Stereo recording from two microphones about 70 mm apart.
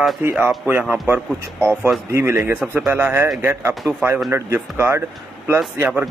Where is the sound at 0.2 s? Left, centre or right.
Right.